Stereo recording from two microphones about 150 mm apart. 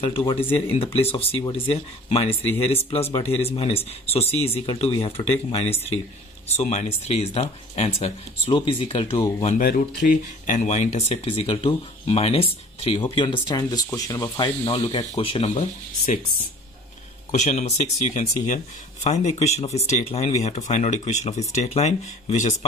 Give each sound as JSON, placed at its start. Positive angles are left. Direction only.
{"t": 0.0, "sound": "speech", "side_deg": 35}
{"t": 9.6, "sound": "speech", "side_deg": 70}
{"t": 17.3, "sound": "speech", "side_deg": 50}